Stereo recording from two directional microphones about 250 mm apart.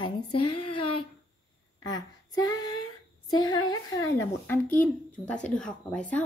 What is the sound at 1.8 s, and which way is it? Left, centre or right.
Female singing, centre.